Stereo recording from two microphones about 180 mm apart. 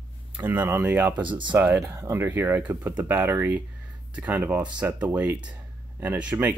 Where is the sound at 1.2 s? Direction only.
25° right (ahead or behind).